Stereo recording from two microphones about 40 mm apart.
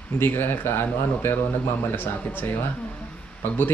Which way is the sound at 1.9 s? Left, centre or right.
Left.